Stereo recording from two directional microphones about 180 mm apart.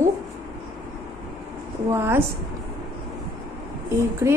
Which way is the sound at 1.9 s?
15° right (ahead or behind).